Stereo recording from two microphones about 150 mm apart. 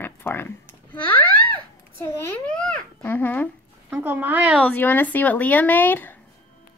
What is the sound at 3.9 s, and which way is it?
Speech, 10° right (ahead or behind).